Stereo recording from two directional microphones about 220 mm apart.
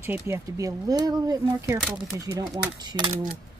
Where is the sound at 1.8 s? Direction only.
Centre (ahead or behind).